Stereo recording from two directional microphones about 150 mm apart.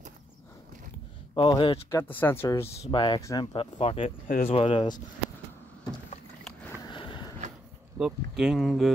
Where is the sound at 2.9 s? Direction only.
30° left (ahead or behind).